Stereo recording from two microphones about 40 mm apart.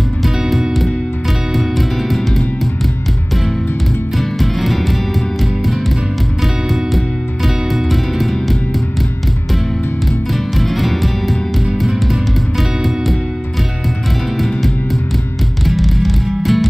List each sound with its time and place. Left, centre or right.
0.4 s music: centre
4.2 s music: centre
6.4 s music: centre
10.7 s music: centre
15.6 s music: centre